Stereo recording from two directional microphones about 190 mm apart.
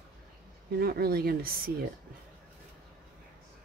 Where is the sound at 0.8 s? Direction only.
50° right (ahead or behind).